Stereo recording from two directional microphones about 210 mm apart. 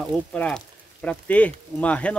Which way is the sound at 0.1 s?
5° left (ahead or behind).